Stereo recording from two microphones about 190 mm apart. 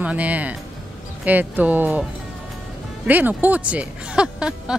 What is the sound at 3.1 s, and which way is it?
Speech, 10° right (ahead or behind).